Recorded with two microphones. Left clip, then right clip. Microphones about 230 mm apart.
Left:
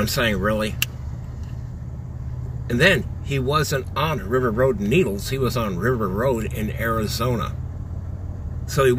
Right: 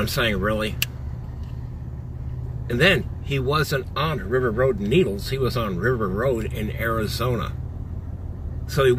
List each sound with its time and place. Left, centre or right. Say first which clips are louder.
0.0 s speech: left 1 dB; centre
2.7 s speech: left 1 dB; centre
8.8 s speech: left 1 dB; centre